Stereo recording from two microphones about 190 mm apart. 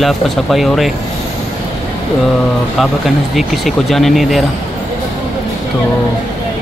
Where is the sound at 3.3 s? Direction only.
Centre (ahead or behind).